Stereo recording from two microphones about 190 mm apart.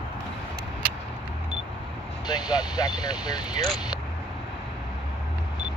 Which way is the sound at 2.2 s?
20° left (ahead or behind).